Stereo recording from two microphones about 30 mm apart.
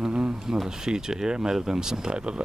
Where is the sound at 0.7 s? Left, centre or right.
Right.